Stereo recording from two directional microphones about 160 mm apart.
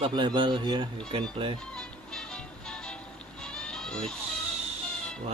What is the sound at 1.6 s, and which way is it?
Music, 5° left (ahead or behind).